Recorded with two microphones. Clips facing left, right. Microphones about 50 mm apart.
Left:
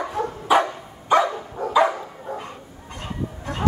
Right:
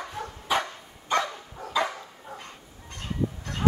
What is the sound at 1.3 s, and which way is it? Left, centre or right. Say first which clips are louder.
Dog: left 11 dB; left.